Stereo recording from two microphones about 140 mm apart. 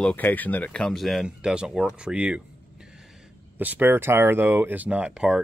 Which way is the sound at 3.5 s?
10° right (ahead or behind).